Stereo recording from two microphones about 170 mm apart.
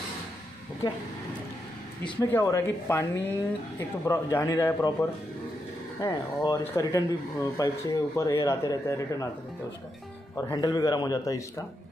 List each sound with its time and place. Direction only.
0.8 s speech: 25° left (ahead or behind)
2.2 s speech: 15° left (ahead or behind)
5.9 s speech: 20° left (ahead or behind)
10.3 s speech: 20° left (ahead or behind)